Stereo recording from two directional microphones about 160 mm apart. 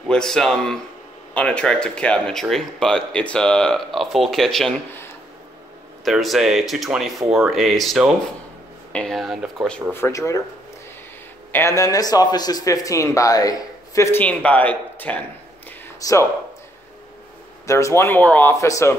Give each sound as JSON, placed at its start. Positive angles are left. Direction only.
{"t": 0.1, "sound": "speech", "side_deg": 5}
{"t": 6.0, "sound": "speech", "side_deg": 0}
{"t": 9.9, "sound": "speech", "side_deg": 15}
{"t": 11.5, "sound": "speech", "side_deg": 20}
{"t": 16.0, "sound": "speech", "side_deg": 20}
{"t": 17.6, "sound": "speech", "side_deg": 20}